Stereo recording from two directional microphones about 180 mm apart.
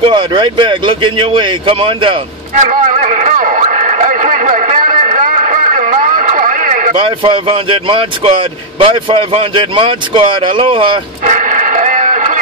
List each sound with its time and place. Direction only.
0.0 s speech: 25° right (ahead or behind)
2.6 s a sound: 45° right (ahead or behind)
7.0 s speech: 30° right (ahead or behind)
11.2 s radio: 45° right (ahead or behind)